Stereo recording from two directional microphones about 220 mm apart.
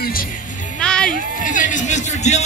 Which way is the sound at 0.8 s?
5° left (ahead or behind).